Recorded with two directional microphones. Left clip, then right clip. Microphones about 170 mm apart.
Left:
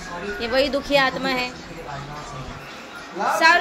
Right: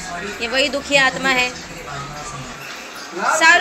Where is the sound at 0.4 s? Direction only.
20° left (ahead or behind).